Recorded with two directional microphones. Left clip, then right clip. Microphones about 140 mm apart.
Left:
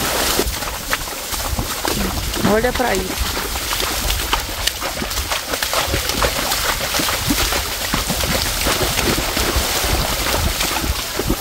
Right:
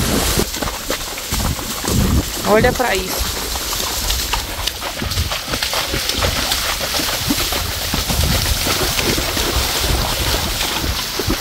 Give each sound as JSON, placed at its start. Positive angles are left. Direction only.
{"t": 2.5, "sound": "speech", "side_deg": -30}